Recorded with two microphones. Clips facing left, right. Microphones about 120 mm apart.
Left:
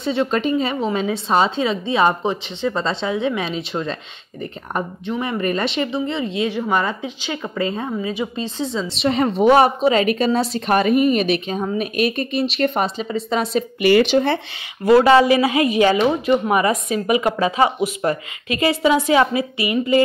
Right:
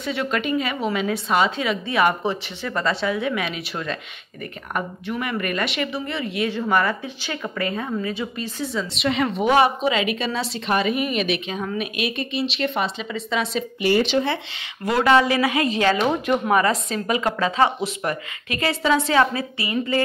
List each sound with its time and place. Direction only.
0.0 s speech: 30° left (ahead or behind)
13.7 s speech: 75° left (ahead or behind)
14.0 s speech: 45° left (ahead or behind)
14.9 s speech: 25° left (ahead or behind)
16.1 s speech: 5° left (ahead or behind)
16.5 s speech: 15° left (ahead or behind)